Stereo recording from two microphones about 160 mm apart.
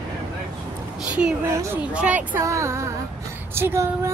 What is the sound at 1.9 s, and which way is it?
Speech, 10° right (ahead or behind).